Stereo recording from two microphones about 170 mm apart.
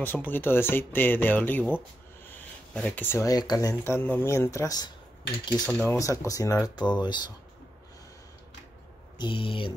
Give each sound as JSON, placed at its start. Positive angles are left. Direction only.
{"t": 0.0, "sound": "speech", "side_deg": 10}
{"t": 9.2, "sound": "speech", "side_deg": 30}